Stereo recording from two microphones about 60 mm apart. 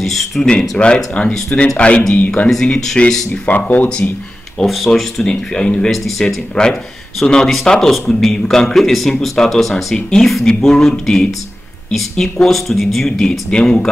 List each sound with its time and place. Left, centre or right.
0.0 s speech: centre
0.5 s speech: centre
2.5 s speech: centre
3.4 s speech: left
4.6 s speech: centre
5.9 s speech: centre
6.2 s speech: centre